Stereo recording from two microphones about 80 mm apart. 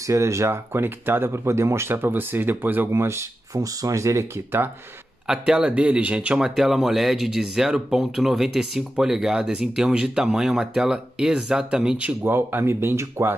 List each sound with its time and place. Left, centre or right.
0.0 s speech: right
5.2 s speech: centre; by 13.3 s right